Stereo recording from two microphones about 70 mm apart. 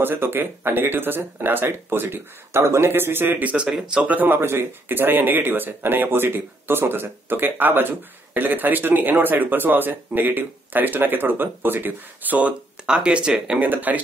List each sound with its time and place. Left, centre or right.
0.0 s speech: right
3.6 s speech: centre
13.6 s speech: right